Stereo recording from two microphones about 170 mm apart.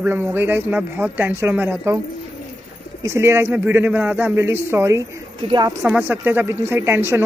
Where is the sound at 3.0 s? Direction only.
15° right (ahead or behind).